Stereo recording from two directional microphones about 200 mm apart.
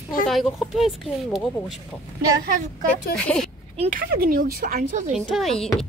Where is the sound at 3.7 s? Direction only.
40° right (ahead or behind).